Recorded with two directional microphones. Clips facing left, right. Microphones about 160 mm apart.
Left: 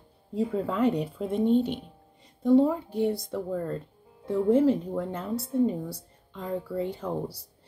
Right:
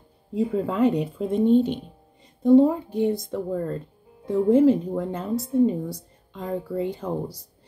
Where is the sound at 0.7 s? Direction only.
15° right (ahead or behind).